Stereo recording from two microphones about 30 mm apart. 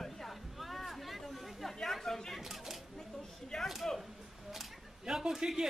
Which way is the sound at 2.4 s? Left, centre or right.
Centre.